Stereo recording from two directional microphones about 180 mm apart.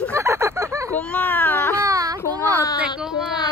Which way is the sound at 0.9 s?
10° left (ahead or behind).